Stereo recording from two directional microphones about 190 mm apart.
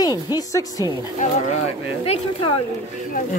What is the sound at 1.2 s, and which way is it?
Speech, 45° left (ahead or behind).